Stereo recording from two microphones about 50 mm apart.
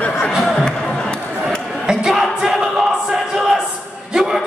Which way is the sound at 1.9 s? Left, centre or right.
Centre.